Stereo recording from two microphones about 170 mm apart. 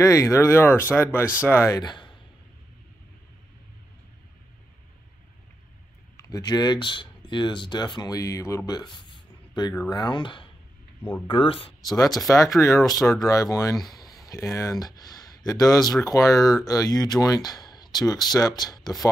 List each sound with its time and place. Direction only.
0.0 s speech: 20° left (ahead or behind)
6.1 s speech: 20° left (ahead or behind)
11.0 s speech: 10° left (ahead or behind)
11.2 s speech: 30° left (ahead or behind)